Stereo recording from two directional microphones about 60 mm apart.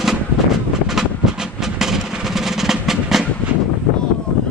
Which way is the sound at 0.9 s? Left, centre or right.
Centre.